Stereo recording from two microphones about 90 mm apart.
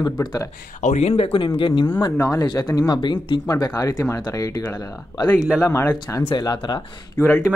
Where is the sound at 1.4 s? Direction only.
60° left (ahead or behind).